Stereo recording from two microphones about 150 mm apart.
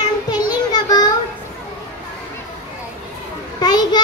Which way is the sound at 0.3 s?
25° left (ahead or behind).